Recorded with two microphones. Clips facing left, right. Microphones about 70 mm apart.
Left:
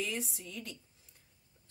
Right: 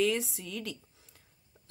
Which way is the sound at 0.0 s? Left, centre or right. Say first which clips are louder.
Right 9 dB; right.